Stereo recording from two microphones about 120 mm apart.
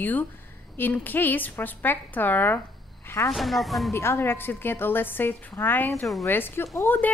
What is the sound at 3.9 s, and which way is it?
A woman's voice, 20° left (ahead or behind).